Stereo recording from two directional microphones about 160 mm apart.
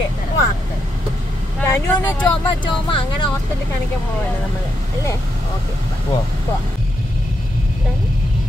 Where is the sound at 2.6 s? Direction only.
30° left (ahead or behind).